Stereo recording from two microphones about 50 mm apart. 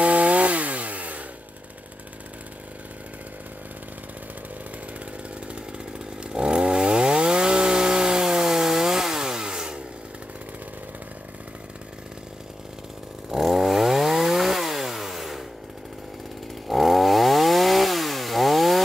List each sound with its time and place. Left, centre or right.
0.0 s chainsaw: right
5.5 s chainsaw: centre
13.3 s chainsaw: centre
16.6 s chainsaw: centre